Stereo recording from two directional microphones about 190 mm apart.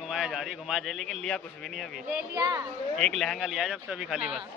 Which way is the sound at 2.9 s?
Centre (ahead or behind).